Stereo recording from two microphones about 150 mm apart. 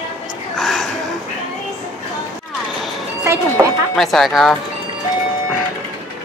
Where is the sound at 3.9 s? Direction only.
Centre (ahead or behind).